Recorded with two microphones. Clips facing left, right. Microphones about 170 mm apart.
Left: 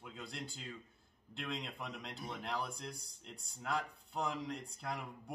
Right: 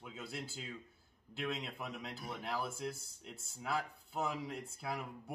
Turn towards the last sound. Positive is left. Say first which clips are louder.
# right 1 dB
turn(degrees=-5)  # may be behind; listen again after turning